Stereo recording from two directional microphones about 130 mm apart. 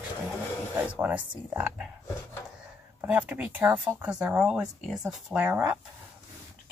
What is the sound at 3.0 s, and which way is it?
Speech, 15° right (ahead or behind).